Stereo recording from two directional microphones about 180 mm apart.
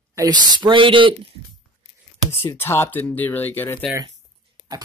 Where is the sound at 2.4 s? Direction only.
15° left (ahead or behind).